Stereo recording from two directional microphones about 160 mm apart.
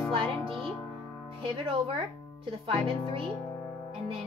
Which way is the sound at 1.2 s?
35° right (ahead or behind).